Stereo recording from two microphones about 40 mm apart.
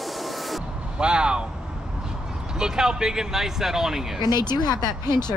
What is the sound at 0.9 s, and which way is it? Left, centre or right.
Speech, right.